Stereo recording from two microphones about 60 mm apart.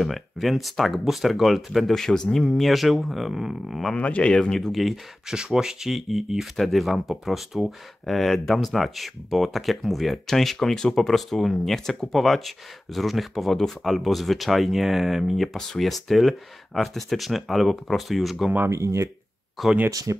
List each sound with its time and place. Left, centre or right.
0.0 s speech: centre
3.9 s speech: left
4.6 s speech: centre
5.3 s speech: centre
18.7 s speech: right
19.6 s speech: centre
19.9 s speech: right